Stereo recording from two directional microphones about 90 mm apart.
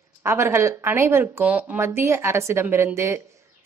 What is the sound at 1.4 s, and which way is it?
Speech, 20° right (ahead or behind).